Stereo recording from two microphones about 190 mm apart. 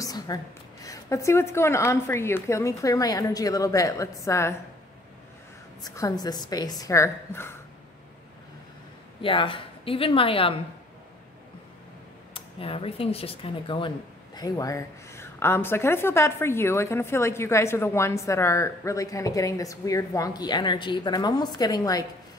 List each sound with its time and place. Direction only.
0.0 s a sound: 20° left (ahead or behind)
0.8 s speech: 15° left (ahead or behind)
5.9 s a woman's voice: 20° left (ahead or behind)
9.2 s a woman's voice: 25° left (ahead or behind)
12.4 s speech: 30° left (ahead or behind)